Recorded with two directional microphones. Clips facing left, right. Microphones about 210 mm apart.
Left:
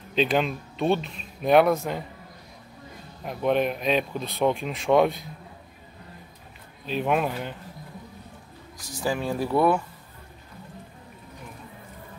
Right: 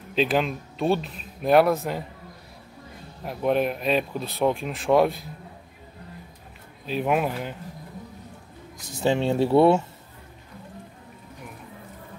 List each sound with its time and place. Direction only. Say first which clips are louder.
0.1 s speech: even; centre (ahead or behind)
3.3 s speech: even; 5° right (ahead or behind)
6.9 s speech: right 1 dB; 5° right (ahead or behind)
8.7 s speech: right 5 dB; 25° right (ahead or behind)